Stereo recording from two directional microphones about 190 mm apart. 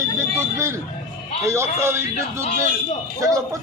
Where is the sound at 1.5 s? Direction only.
15° right (ahead or behind).